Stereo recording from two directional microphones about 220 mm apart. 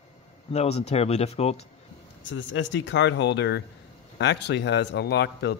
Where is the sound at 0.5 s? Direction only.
30° left (ahead or behind).